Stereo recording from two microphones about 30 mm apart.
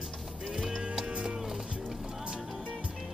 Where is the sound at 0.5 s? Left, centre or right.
Centre.